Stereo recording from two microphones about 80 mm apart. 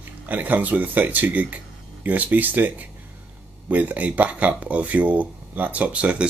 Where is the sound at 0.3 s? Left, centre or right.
Right.